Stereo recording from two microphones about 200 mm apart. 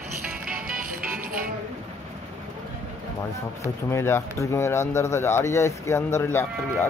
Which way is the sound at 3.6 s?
15° left (ahead or behind).